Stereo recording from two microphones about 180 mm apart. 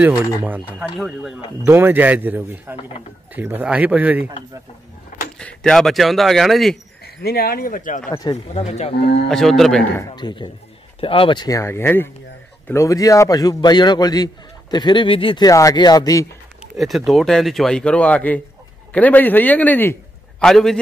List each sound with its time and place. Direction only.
0.4 s speech: 10° right (ahead or behind)
1.6 s speech: 10° right (ahead or behind)
5.4 s speech: 5° left (ahead or behind)
7.2 s speech: 60° left (ahead or behind)
8.5 s speech: 35° left (ahead or behind)
9.3 s speech: centre (ahead or behind)
9.9 s a man's voice: 25° left (ahead or behind)
16.7 s a man's voice: centre (ahead or behind)